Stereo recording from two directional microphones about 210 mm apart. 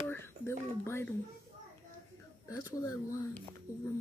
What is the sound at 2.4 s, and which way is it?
Speech, 15° left (ahead or behind).